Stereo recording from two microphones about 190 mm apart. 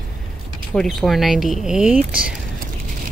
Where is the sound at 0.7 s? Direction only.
5° left (ahead or behind).